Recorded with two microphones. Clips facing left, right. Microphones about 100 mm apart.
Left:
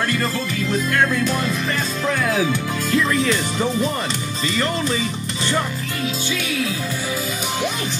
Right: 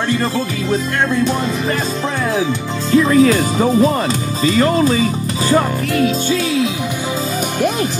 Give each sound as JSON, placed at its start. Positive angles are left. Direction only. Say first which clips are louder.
{"t": 2.9, "sound": "speech", "louder": "right 9 dB", "side_deg": -35}